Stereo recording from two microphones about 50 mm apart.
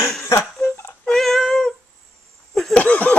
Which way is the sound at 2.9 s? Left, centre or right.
Left.